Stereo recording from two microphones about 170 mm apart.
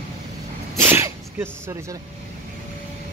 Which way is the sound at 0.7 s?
15° right (ahead or behind).